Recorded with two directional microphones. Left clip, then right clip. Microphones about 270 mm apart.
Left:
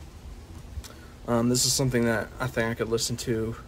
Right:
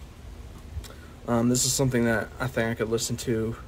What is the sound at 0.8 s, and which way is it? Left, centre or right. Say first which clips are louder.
Speech: even; centre.